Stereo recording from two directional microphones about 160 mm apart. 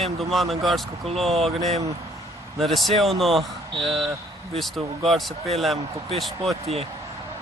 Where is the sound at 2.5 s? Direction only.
Centre (ahead or behind).